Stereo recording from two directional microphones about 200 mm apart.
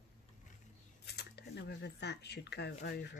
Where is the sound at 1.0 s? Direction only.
55° left (ahead or behind).